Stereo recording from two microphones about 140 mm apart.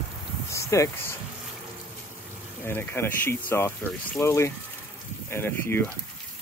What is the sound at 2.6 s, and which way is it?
Speech, 15° left (ahead or behind).